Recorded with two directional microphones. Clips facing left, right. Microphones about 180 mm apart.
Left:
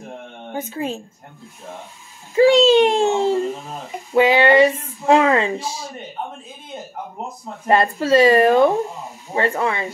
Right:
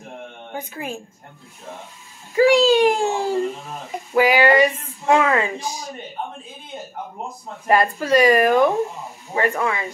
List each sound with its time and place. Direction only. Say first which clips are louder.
0.6 s speech: left 5 dB; 25° left (ahead or behind)
2.3 s a child's voice: left 2 dB; 25° left (ahead or behind)
7.6 s speech: left 1 dB; 25° left (ahead or behind)